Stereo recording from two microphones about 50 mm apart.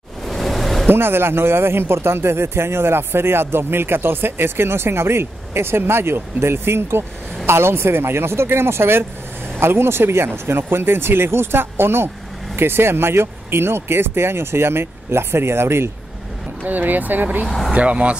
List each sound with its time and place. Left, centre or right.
0.3 s a sound: centre
0.8 s speech: right
16.6 s speech: right
17.5 s speech: centre
17.7 s speech: right